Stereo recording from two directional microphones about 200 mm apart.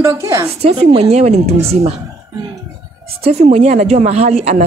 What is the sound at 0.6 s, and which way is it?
Speech, 30° right (ahead or behind).